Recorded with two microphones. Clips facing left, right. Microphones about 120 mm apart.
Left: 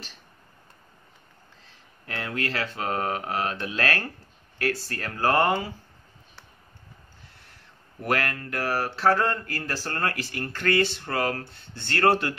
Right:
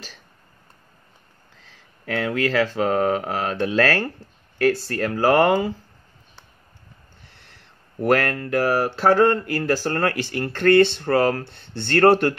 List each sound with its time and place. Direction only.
2.0 s speech: 90° right
2.9 s mantra: 55° right (ahead or behind)
4.7 s speech: 85° right
8.1 s a sound: 55° right (ahead or behind)